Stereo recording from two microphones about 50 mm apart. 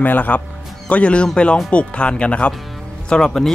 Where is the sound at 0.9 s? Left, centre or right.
Left.